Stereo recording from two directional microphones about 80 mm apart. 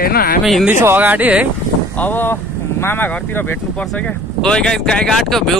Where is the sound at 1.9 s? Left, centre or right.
Left.